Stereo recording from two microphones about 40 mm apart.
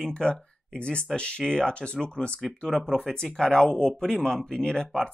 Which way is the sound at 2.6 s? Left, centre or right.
Centre.